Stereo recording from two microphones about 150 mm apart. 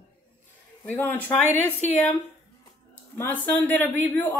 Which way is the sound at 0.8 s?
10° left (ahead or behind).